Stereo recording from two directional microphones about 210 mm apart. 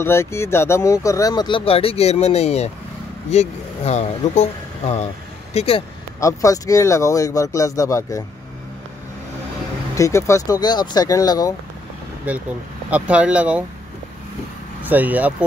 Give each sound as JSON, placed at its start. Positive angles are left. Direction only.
{"t": 0.0, "sound": "speech", "side_deg": 10}
{"t": 6.1, "sound": "speech", "side_deg": 15}
{"t": 9.9, "sound": "speech", "side_deg": 15}
{"t": 12.3, "sound": "speech", "side_deg": -10}
{"t": 14.8, "sound": "speech", "side_deg": -10}